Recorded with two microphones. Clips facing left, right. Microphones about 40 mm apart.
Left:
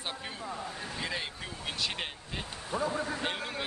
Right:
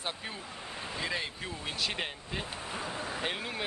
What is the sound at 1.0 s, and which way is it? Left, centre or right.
Speech, centre.